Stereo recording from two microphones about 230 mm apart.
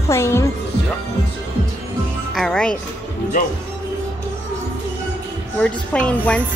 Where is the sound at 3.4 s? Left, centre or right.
Left.